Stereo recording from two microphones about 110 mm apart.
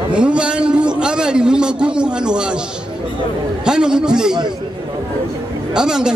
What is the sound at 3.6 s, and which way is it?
Speech, 5° right (ahead or behind).